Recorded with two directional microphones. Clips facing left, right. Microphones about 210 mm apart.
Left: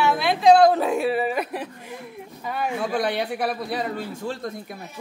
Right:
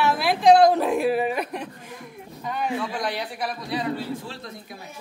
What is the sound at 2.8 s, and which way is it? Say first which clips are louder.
Speech: left 5 dB; 55° left (ahead or behind).